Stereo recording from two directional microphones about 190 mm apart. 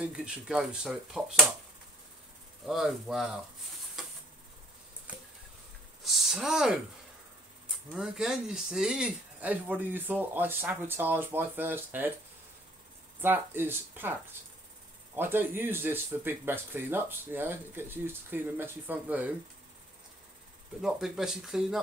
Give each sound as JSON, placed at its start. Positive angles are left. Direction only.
{"t": 0.0, "sound": "speech", "side_deg": -5}
{"t": 2.6, "sound": "speech", "side_deg": 0}
{"t": 4.0, "sound": "a sound", "side_deg": 0}
{"t": 6.0, "sound": "speech", "side_deg": 0}
{"t": 7.9, "sound": "speech", "side_deg": 0}
{"t": 13.2, "sound": "speech", "side_deg": -10}
{"t": 15.1, "sound": "speech", "side_deg": -10}
{"t": 20.8, "sound": "speech", "side_deg": 0}